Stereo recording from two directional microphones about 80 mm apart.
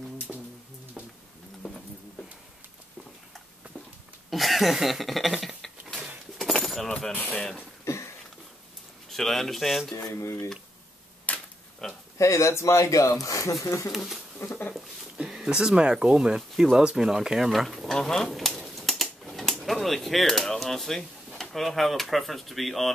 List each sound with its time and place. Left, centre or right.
1.6 s a sound: centre
4.3 s speech: centre
6.3 s keys jangling: centre
6.9 s mechanisms: centre
7.2 s speech: centre
7.8 s a sound: left
9.1 s speech: centre
10.0 s speech: left
11.3 s a sound: centre
11.8 s speech: centre
12.2 s speech: left
13.9 s speech: centre
14.4 s a sound: left
14.7 s speech: centre